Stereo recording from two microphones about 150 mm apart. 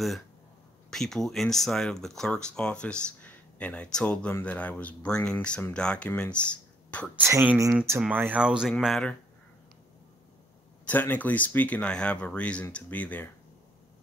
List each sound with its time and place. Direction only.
0.8 s speech: 5° left (ahead or behind)
7.2 s speech: 15° right (ahead or behind); by 9.1 s 5° left (ahead or behind)
10.9 s speech: 10° left (ahead or behind)